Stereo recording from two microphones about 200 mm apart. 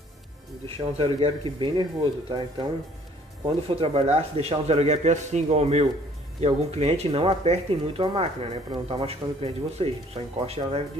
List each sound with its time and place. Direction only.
0.7 s speech: 25° right (ahead or behind)
3.6 s speech: 30° right (ahead or behind)